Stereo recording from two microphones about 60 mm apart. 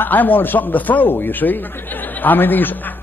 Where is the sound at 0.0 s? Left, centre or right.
Left.